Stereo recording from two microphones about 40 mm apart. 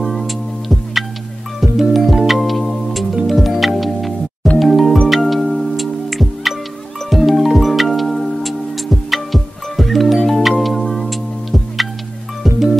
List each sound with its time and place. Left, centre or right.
0.0 s music: centre